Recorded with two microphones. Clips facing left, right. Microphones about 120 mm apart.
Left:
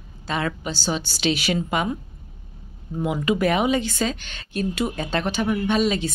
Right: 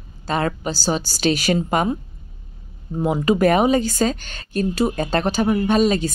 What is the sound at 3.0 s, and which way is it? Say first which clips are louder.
A woman's voice: right 4 dB; 40° right (ahead or behind).